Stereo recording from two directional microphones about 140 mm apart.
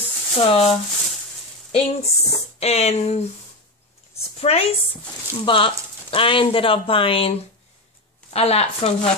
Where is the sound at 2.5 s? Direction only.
50° left (ahead or behind).